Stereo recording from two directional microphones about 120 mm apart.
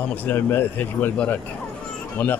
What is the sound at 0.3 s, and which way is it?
A man's voice, 15° left (ahead or behind).